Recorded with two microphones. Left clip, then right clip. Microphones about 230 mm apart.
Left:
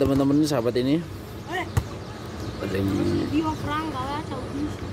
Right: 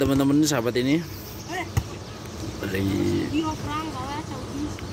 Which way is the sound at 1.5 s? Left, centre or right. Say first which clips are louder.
Left 2 dB; centre.